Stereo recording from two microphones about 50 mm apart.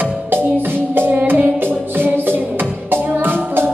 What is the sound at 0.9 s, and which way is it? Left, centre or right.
Music, right.